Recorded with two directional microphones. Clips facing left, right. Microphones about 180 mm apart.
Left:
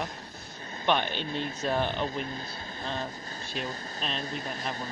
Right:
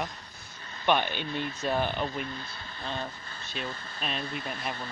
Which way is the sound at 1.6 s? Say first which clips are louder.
Even; 5° right (ahead or behind).